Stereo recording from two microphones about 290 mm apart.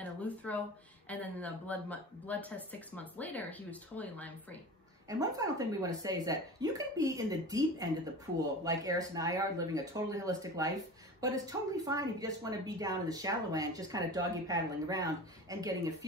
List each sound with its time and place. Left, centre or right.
0.0 s a sound: centre
1.0 s speech: centre
5.0 s speech: centre